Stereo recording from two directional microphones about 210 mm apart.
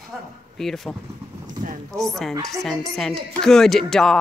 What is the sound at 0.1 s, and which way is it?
A woman's voice, centre (ahead or behind).